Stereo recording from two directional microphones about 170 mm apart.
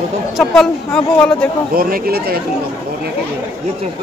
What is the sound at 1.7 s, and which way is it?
Speech, 60° right (ahead or behind).